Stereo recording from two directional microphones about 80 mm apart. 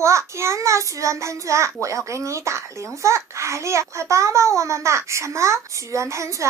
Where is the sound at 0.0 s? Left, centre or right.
Right.